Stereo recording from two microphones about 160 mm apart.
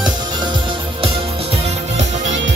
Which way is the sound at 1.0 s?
40° right (ahead or behind).